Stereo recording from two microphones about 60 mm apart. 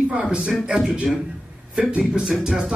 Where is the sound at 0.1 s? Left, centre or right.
Centre.